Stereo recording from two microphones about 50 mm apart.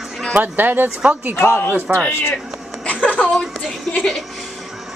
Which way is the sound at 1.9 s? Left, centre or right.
Right.